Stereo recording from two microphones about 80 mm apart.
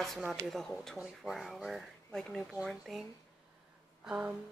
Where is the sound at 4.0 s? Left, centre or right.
Centre.